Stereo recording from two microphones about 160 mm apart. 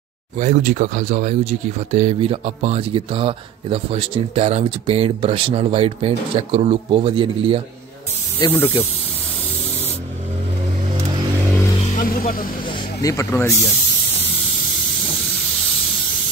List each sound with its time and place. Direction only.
0.4 s speech: 55° right (ahead or behind); by 7.6 s 35° right (ahead or behind)
8.5 s speech: 10° left (ahead or behind)
12.0 s music: 65° left (ahead or behind)
13.0 s speech: 20° left (ahead or behind)